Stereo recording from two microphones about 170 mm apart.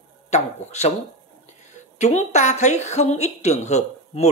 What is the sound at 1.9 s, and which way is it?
Speech, 45° left (ahead or behind).